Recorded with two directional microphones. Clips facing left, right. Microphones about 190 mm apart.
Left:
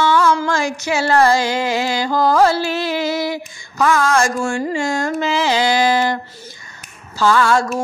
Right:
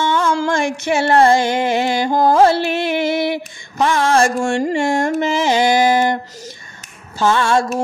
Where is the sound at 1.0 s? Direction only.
25° right (ahead or behind).